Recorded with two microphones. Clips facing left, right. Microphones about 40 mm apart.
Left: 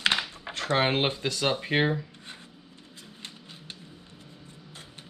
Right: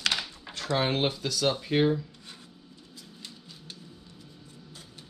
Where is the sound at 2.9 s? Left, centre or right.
Left.